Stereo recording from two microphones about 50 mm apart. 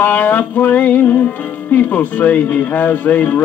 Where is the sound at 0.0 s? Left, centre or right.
Left.